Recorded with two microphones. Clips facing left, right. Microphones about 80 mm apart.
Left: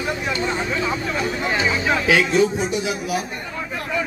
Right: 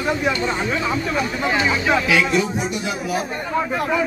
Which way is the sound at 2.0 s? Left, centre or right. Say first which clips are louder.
Left 2 dB; left.